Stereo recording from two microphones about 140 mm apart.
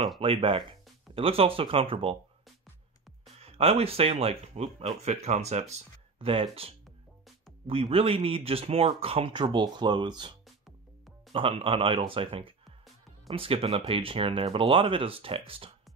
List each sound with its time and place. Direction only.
0.2 s speech: 40° right (ahead or behind)
3.3 s speech: 45° right (ahead or behind)
11.3 s speech: 40° right (ahead or behind)